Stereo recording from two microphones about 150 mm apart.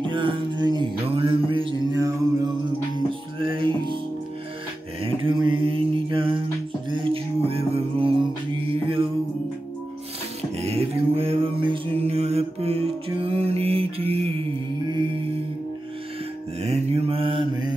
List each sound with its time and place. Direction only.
0.0 s music: 35° right (ahead or behind)
2.0 s music: 25° right (ahead or behind)
3.1 s music: 35° right (ahead or behind)
5.0 s mantra: 35° right (ahead or behind)
8.8 s music: 35° right (ahead or behind)
10.6 s music: 45° right (ahead or behind)
16.6 s mantra: 45° right (ahead or behind)